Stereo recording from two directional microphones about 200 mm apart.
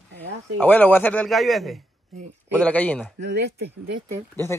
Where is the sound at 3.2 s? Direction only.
60° right (ahead or behind).